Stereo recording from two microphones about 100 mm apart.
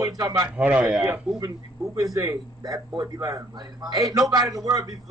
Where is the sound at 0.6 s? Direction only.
15° right (ahead or behind).